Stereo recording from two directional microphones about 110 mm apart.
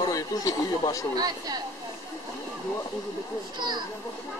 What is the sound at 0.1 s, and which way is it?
Speech, 35° left (ahead or behind).